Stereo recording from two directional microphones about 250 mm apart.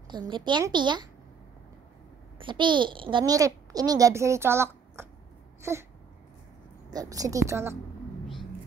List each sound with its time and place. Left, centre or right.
0.1 s a child's voice: centre
2.3 s a child's voice: centre
5.6 s a sound: centre
6.9 s a child's voice: centre